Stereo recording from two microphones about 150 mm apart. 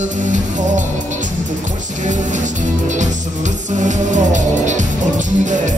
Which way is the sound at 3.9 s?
55° right (ahead or behind).